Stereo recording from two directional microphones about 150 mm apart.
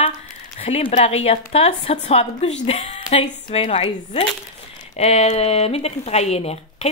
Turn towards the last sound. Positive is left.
turn(degrees=45)  # may be behind; listen again after turning